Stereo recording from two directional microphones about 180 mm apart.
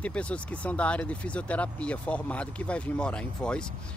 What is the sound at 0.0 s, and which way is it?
Speech, 5° left (ahead or behind).